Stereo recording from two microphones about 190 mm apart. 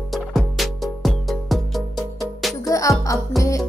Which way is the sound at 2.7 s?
15° left (ahead or behind).